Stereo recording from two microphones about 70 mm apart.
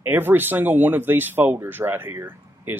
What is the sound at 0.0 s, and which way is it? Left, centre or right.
Speech, right.